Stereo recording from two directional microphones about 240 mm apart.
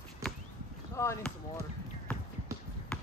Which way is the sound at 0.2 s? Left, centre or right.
Centre.